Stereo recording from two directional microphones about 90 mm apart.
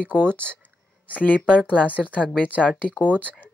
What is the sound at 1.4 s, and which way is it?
A woman's voice, 10° right (ahead or behind).